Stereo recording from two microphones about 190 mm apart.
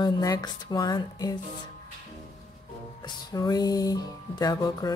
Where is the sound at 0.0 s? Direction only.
20° left (ahead or behind).